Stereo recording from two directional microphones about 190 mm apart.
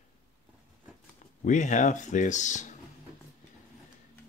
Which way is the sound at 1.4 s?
40° left (ahead or behind).